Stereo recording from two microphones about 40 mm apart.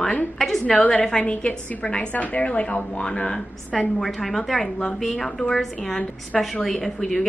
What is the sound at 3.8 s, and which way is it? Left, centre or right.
A woman's voice, centre.